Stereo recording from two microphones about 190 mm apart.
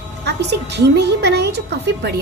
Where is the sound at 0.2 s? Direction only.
65° right (ahead or behind).